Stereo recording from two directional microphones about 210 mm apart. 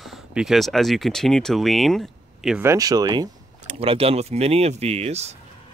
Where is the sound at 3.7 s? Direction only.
30° right (ahead or behind).